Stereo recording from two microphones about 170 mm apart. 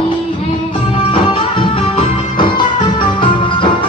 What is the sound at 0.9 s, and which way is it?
Music, 30° left (ahead or behind).